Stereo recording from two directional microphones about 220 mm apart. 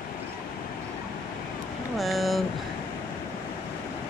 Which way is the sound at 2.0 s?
Centre (ahead or behind).